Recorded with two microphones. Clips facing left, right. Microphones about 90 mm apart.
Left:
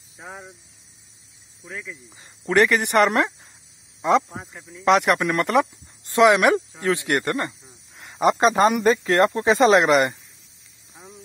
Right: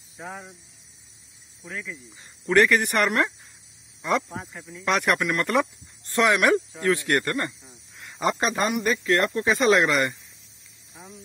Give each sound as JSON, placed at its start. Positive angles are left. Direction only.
{"t": 2.5, "sound": "speech", "side_deg": 20}
{"t": 4.3, "sound": "speech", "side_deg": 10}
{"t": 7.9, "sound": "cricket", "side_deg": 40}
{"t": 8.4, "sound": "speech", "side_deg": 25}